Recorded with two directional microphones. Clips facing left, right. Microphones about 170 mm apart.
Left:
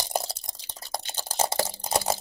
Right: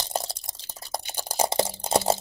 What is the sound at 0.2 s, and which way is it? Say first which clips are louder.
Drip: even; centre (ahead or behind).